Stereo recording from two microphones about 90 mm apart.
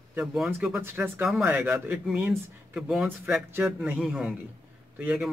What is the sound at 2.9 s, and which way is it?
A man's voice, 5° right (ahead or behind).